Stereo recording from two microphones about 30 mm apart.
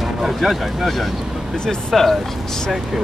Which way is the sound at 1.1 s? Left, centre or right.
Centre.